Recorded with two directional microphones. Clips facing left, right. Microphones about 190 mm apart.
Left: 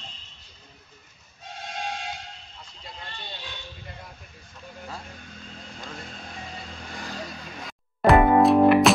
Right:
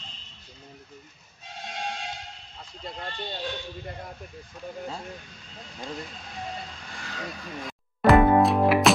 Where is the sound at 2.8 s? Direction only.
50° right (ahead or behind).